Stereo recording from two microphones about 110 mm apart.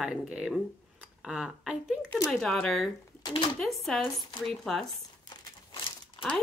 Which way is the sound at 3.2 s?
50° left (ahead or behind).